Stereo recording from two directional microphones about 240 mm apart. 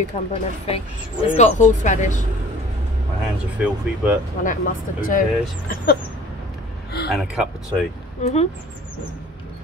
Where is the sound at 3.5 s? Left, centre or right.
Centre.